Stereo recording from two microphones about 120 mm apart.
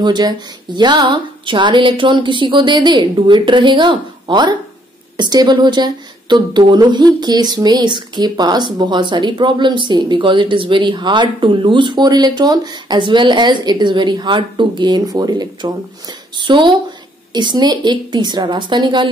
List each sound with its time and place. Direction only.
0.0 s a woman's voice: 35° right (ahead or behind)